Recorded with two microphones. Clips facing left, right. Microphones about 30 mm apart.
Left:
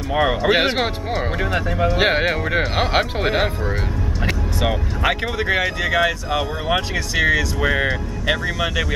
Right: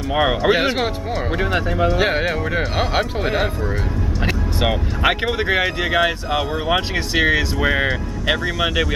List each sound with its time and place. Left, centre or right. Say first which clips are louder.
0.1 s speech: right 1 dB; centre
0.5 s speech: even; centre
1.4 s speech: right 3 dB; centre
2.0 s speech: left 1 dB; centre
4.6 s speech: right 2 dB; centre